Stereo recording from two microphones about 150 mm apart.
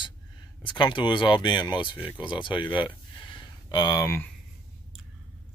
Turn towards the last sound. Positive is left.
turn(degrees=20)  # may be behind; listen again after turning